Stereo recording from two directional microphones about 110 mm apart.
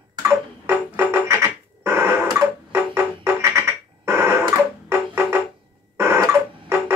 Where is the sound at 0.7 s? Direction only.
20° right (ahead or behind).